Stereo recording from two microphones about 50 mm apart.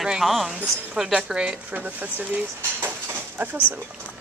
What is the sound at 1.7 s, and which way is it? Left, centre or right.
Speech, right.